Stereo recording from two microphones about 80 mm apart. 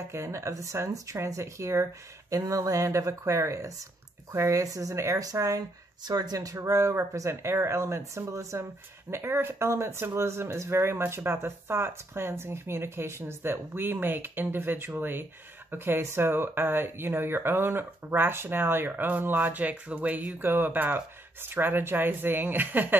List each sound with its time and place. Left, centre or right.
0.1 s speech: right
6.0 s speech: right